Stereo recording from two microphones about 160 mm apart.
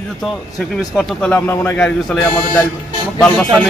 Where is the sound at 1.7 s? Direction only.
5° left (ahead or behind).